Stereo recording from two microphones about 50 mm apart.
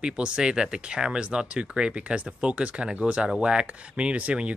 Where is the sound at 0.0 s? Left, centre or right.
Centre.